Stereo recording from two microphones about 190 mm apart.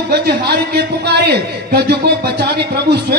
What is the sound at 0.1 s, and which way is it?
A man's voice, 60° right (ahead or behind).